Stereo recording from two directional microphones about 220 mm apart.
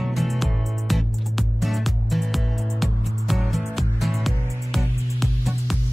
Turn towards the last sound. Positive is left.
turn(degrees=0)  # may be behind; listen again after turning